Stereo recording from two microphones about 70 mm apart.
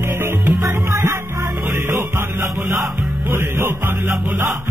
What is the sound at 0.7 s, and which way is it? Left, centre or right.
Music, right.